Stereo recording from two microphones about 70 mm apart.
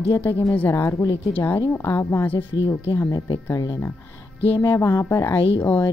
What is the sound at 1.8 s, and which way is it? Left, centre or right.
Speech, left.